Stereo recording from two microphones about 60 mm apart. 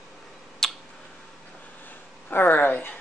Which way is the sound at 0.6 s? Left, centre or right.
Centre.